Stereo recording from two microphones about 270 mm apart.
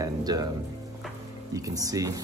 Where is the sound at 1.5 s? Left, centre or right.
Centre.